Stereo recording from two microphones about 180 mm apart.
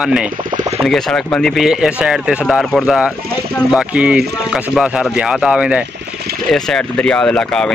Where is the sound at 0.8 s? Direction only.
5° left (ahead or behind).